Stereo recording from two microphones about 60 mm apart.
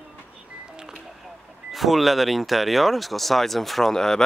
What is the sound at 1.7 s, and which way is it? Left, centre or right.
Speech, centre.